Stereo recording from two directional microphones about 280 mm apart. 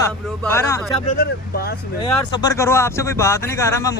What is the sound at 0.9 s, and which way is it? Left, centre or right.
Speech, left.